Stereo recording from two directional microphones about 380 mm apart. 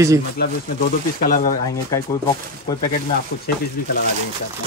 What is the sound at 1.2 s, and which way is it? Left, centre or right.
Speech, left.